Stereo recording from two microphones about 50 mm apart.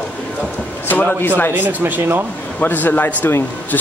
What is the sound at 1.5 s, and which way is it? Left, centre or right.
Speech, right.